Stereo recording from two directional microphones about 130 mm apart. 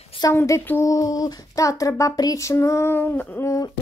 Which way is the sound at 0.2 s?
20° left (ahead or behind).